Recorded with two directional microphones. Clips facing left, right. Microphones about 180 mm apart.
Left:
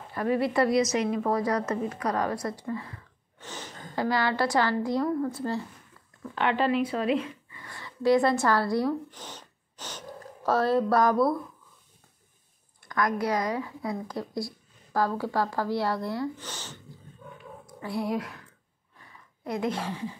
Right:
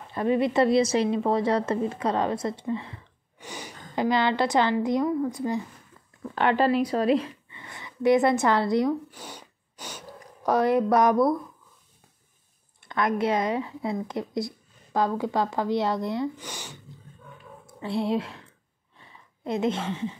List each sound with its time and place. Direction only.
0.1 s a woman's voice: 20° right (ahead or behind)
5.0 s speech: 5° right (ahead or behind)
5.3 s speech: 15° right (ahead or behind)
6.3 s speech: 40° right (ahead or behind)
7.4 s speech: 20° right (ahead or behind)
9.1 s a sound: 10° right (ahead or behind)
12.8 s a woman's voice: 25° right (ahead or behind)
17.8 s a woman's voice: 25° right (ahead or behind)
18.9 s a sound: 25° right (ahead or behind)